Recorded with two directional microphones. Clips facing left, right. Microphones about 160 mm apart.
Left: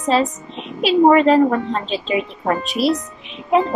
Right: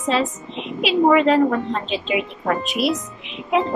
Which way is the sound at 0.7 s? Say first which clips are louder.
Left 3 dB; 40° left (ahead or behind).